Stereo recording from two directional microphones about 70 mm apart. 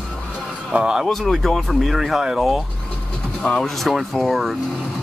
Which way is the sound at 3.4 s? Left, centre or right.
Centre.